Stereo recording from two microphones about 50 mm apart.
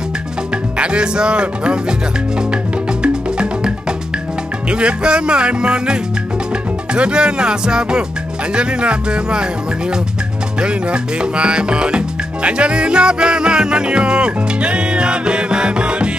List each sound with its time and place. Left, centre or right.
0.7 s music: centre
3.0 s music: centre